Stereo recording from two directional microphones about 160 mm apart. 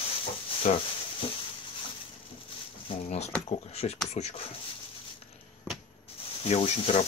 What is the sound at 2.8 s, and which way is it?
Speech, 40° left (ahead or behind).